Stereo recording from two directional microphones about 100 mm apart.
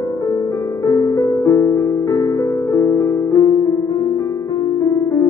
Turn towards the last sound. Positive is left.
turn(degrees=30)  # may be behind; listen again after turning